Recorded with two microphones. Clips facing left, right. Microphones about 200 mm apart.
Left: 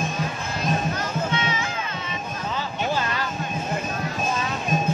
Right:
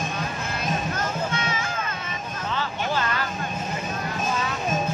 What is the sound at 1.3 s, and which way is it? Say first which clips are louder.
Music: left 2 dB; 50° right (ahead or behind).